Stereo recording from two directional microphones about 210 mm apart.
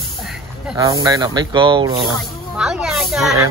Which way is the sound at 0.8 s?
15° right (ahead or behind).